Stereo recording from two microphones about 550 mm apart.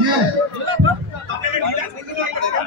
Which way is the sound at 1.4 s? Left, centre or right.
Right.